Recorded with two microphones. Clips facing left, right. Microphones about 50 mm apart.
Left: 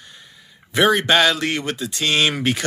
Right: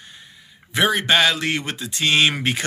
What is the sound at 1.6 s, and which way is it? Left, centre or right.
Speech, right.